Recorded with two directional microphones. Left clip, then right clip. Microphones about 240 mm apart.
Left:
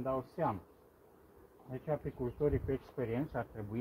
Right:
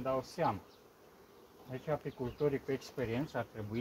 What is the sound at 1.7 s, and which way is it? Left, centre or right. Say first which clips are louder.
Speech: even; centre.